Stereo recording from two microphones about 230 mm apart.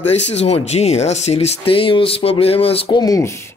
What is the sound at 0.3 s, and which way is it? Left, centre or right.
Speech, left.